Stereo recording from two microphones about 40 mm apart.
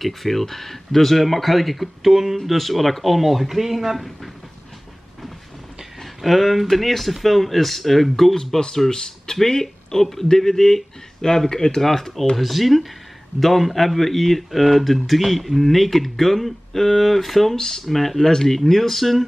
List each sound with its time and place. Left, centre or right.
0.0 s speech: centre
6.2 s speech: centre
8.5 s speech: centre